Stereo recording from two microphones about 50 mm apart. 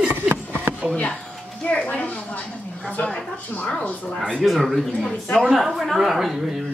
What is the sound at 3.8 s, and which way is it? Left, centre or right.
Speech, left.